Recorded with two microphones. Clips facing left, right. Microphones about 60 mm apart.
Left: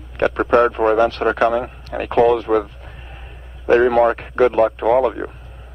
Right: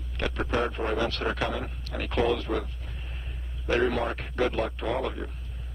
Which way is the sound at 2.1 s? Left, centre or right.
Left.